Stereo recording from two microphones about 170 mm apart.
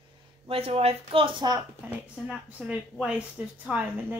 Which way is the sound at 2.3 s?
5° right (ahead or behind).